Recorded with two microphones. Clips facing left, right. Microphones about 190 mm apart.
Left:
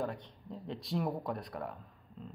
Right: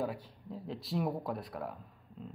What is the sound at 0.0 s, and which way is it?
Speech, 5° right (ahead or behind).